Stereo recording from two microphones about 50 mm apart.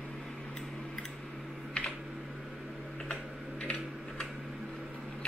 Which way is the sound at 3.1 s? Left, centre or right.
Left.